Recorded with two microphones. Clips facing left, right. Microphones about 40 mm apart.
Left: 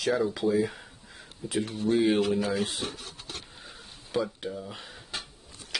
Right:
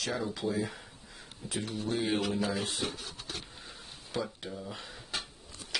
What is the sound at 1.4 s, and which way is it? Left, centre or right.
Speech, centre.